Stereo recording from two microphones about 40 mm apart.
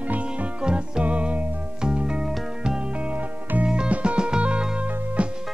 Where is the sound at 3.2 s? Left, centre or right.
Right.